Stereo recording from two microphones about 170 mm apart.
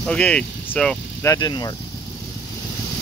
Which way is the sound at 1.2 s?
20° left (ahead or behind).